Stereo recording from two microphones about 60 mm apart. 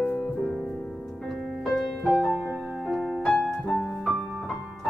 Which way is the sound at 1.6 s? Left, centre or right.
Centre.